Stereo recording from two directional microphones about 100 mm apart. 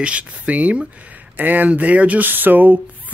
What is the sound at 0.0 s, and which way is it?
Speech, 15° right (ahead or behind).